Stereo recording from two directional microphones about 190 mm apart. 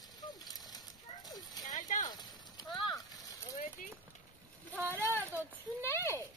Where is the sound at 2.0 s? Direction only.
20° left (ahead or behind).